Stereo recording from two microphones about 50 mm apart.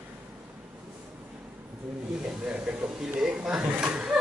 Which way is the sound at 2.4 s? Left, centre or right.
Centre.